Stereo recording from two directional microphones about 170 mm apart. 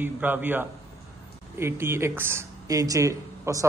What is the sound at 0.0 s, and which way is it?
Speech, 10° right (ahead or behind).